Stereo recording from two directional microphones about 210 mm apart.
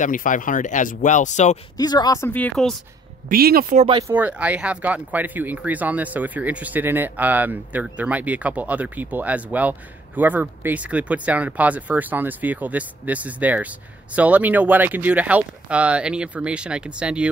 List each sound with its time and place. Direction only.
0.0 s speech: 40° left (ahead or behind)
1.8 s a woman's voice: 20° left (ahead or behind)
3.3 s speech: 45° right (ahead or behind)
4.1 s speech: 10° right (ahead or behind)